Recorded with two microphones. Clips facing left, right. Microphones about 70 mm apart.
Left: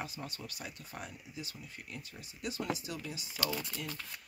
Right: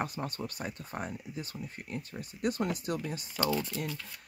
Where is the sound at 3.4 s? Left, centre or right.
Right.